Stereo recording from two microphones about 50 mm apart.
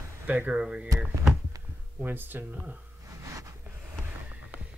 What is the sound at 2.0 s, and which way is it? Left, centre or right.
Speech, right.